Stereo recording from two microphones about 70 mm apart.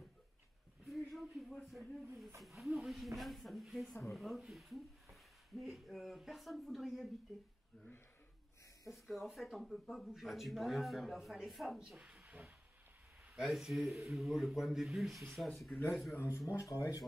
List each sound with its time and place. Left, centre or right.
0.8 s a sound: centre
2.4 s speech: centre
8.9 s speech: centre
13.4 s speech: centre
16.5 s speech: left